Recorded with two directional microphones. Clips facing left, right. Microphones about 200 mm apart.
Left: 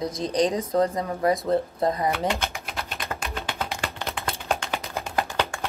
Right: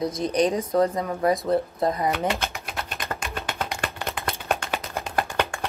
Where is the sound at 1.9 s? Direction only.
15° left (ahead or behind).